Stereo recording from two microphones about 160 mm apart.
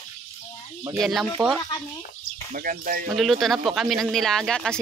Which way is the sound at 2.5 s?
60° right (ahead or behind).